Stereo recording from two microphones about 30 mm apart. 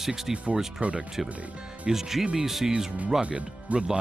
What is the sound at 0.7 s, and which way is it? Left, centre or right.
Speech, right.